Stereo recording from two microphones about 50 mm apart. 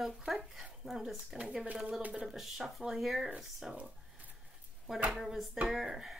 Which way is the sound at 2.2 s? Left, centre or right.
Centre.